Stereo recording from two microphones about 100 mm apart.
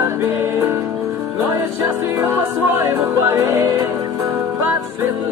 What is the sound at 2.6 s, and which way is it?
Music, 20° right (ahead or behind).